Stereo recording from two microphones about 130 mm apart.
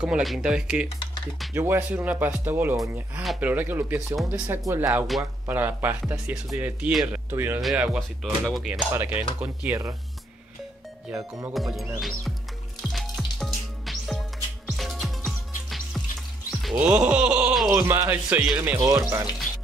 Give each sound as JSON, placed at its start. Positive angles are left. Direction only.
{"t": 0.0, "sound": "speech", "side_deg": -5}
{"t": 1.5, "sound": "speech", "side_deg": -20}
{"t": 2.8, "sound": "speech", "side_deg": 0}
{"t": 3.3, "sound": "speech", "side_deg": -10}
{"t": 7.2, "sound": "speech", "side_deg": -15}
{"t": 8.9, "sound": "speech", "side_deg": -15}
{"t": 11.1, "sound": "speech", "side_deg": -25}
{"t": 11.5, "sound": "speech", "side_deg": 0}
{"t": 12.8, "sound": "music", "side_deg": 0}
{"t": 16.7, "sound": "groan", "side_deg": -10}
{"t": 17.6, "sound": "speech", "side_deg": -20}
{"t": 18.8, "sound": "speech", "side_deg": -25}